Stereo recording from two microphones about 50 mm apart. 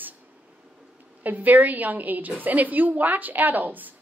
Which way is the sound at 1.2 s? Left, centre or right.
Right.